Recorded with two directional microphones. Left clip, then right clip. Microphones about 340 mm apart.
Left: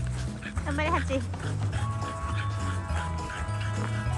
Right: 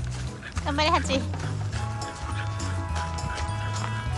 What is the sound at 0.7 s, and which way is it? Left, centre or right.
Speech, centre.